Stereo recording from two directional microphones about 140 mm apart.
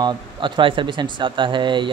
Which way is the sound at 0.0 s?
35° right (ahead or behind).